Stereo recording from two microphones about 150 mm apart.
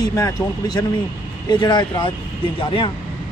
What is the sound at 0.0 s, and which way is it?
Speech, 25° left (ahead or behind).